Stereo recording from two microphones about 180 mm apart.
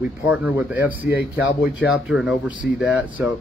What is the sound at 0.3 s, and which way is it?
Speech, 10° right (ahead or behind).